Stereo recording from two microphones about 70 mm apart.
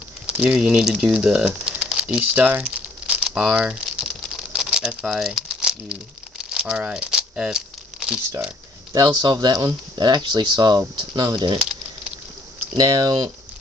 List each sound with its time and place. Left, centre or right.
0.3 s speech: centre
2.7 s crumpling: centre
3.3 s speech: centre
3.8 s a sound: centre
6.9 s crumpling: centre
8.9 s speech: right
12.7 s speech: right